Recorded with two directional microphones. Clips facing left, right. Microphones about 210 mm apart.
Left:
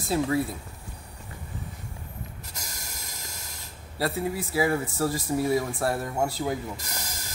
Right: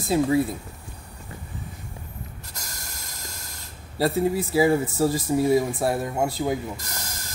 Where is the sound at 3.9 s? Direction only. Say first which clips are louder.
Right 6 dB; 25° right (ahead or behind).